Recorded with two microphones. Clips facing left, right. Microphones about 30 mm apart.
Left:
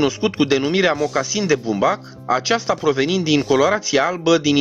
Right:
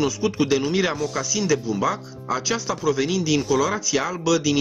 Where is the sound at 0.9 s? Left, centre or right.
Centre.